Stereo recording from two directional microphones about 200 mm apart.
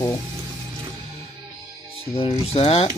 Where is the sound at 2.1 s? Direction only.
30° left (ahead or behind).